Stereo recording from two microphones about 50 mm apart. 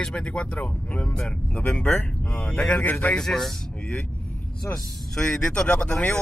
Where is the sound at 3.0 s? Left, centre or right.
Centre.